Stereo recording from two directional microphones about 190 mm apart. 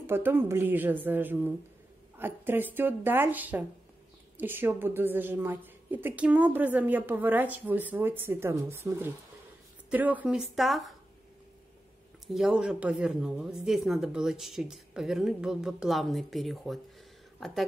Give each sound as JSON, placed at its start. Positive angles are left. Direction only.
{"t": 0.0, "sound": "a woman's voice", "side_deg": -10}
{"t": 12.3, "sound": "speech", "side_deg": -5}